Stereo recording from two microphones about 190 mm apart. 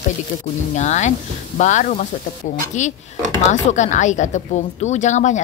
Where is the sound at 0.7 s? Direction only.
40° left (ahead or behind).